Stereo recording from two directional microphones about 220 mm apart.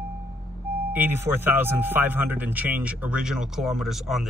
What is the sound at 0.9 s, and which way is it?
Speech, 10° right (ahead or behind).